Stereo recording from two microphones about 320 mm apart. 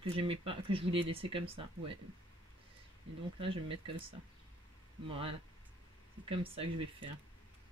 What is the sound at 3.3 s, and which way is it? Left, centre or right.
Speech, centre.